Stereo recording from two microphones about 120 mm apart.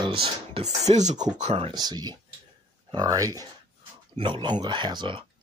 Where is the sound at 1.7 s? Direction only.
35° right (ahead or behind).